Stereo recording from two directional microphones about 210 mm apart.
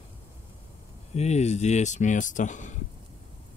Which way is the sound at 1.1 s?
30° left (ahead or behind).